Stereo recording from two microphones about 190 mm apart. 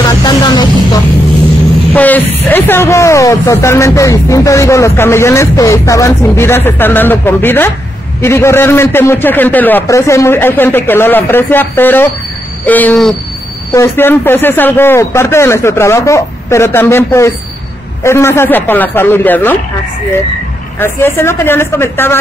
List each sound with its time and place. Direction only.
0.2 s a sound: 25° left (ahead or behind)
2.0 s speech: 10° left (ahead or behind)
20.8 s speech: 10° left (ahead or behind)